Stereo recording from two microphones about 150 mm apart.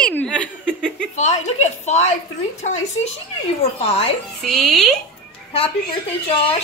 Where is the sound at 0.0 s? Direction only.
10° left (ahead or behind).